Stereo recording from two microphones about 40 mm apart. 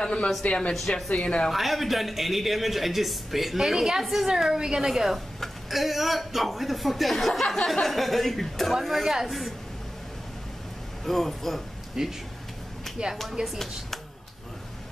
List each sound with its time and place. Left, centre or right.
0.0 s speech: left
0.7 s speech: centre
1.1 s speech: left
1.5 s a man's voice: centre
11.1 s speech: centre
12.0 s a woman's voice: centre